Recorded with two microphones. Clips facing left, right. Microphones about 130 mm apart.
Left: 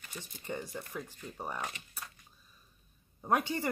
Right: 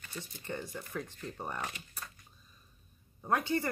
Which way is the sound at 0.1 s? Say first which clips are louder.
Even; 15° left (ahead or behind).